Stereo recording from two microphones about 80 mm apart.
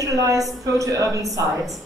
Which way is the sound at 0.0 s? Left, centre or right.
Right.